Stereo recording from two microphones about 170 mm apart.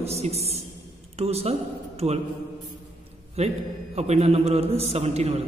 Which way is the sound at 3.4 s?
40° right (ahead or behind).